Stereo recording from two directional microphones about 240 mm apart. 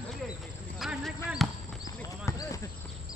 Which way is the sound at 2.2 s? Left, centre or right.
Centre.